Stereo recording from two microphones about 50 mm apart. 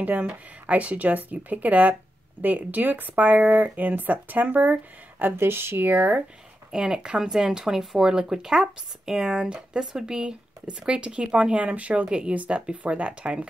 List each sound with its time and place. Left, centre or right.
0.0 s speech: right
5.2 s speech: right
6.7 s speech: centre